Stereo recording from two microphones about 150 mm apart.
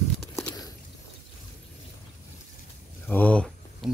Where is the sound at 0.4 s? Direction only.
20° left (ahead or behind).